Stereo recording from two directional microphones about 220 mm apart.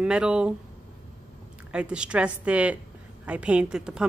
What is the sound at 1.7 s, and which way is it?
Speech, 5° right (ahead or behind).